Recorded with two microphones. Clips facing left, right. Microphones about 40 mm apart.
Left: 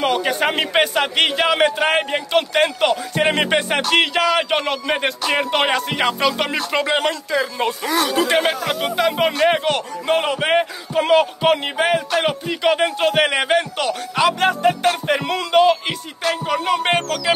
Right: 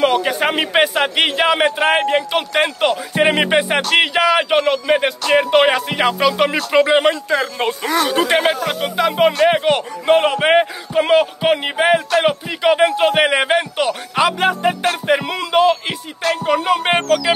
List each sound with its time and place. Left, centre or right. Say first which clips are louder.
0.0 s a man's voice: right 3 dB; centre
7.2 s speech: right 2 dB; right
8.4 s speech: right 2 dB; centre
9.7 s a man's voice: right 5 dB; centre